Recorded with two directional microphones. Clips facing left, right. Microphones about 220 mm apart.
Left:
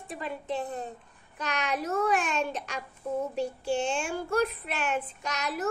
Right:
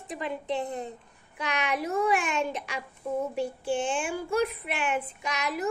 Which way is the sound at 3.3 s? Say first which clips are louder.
Even; 55° right (ahead or behind).